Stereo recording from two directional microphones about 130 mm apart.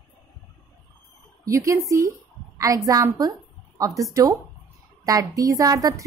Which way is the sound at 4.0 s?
25° right (ahead or behind).